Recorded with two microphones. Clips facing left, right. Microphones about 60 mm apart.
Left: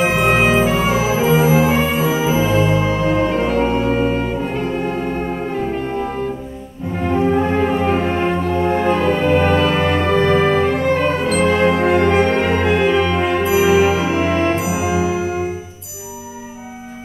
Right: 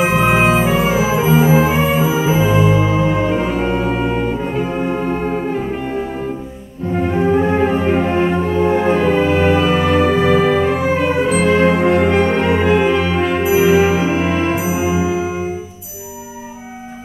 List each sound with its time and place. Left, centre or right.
0.0 s music: centre
7.0 s music: centre
14.7 s music: right